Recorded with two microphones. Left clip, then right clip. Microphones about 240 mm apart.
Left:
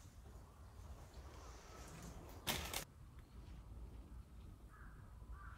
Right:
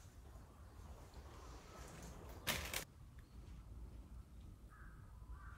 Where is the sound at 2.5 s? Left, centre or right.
Centre.